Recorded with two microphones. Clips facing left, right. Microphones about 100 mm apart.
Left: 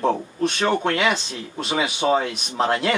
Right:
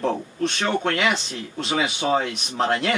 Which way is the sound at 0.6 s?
20° left (ahead or behind).